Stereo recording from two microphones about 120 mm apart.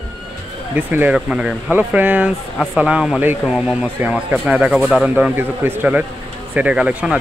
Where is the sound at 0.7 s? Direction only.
10° right (ahead or behind).